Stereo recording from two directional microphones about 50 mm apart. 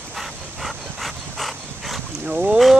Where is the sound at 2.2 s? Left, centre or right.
Right.